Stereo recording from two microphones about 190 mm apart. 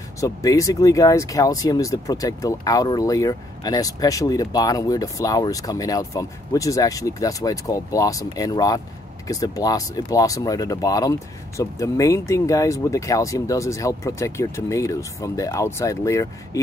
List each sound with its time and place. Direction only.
0.2 s speech: 15° left (ahead or behind)